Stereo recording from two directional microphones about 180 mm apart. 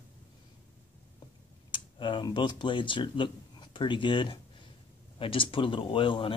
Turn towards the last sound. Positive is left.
turn(degrees=30)  # may be behind; listen again after turning